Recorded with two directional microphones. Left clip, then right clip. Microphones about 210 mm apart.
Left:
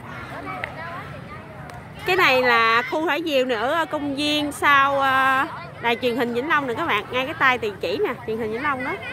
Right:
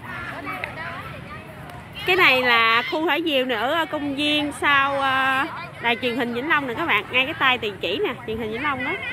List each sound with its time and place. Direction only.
2.0 s a woman's voice: 5° left (ahead or behind)
4.1 s a sound: 5° left (ahead or behind)
4.6 s a woman's voice: 5° left (ahead or behind)
7.6 s a woman's voice: 35° left (ahead or behind)
8.5 s a woman's voice: centre (ahead or behind)